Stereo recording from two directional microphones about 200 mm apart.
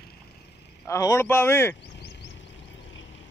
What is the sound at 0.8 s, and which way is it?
Speech, 15° left (ahead or behind).